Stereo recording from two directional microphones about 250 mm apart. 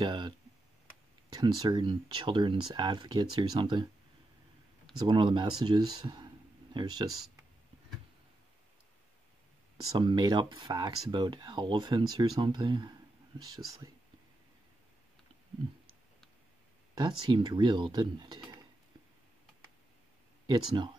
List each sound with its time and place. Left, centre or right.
0.0 s speech: centre
1.3 s speech: centre
5.0 s speech: centre
9.9 s speech: centre
16.9 s speech: centre
20.4 s speech: centre